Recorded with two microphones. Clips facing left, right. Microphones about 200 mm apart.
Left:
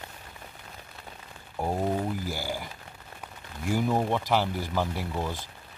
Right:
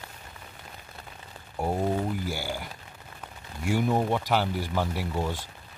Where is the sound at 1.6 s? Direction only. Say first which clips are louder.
Right 1 dB; centre (ahead or behind).